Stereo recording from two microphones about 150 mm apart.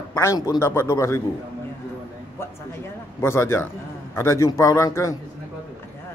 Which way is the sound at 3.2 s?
15° left (ahead or behind).